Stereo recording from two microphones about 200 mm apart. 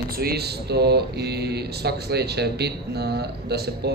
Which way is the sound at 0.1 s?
50° right (ahead or behind).